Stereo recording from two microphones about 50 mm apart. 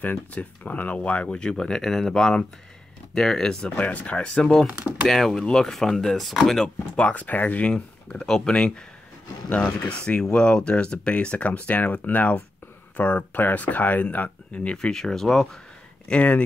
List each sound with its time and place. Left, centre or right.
0.0 s speech: left
1.3 s speech: centre
4.3 s speech: centre
4.7 s speech: right
5.0 s speech: centre
7.0 s speech: left
7.6 s speech: centre
14.9 s speech: centre
16.1 s speech: left